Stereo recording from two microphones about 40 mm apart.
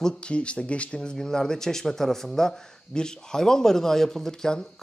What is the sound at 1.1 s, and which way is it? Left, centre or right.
Speech, centre.